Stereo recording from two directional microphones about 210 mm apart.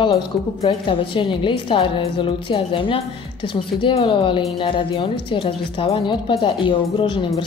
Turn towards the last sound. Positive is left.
turn(degrees=20)  # may be behind; listen again after turning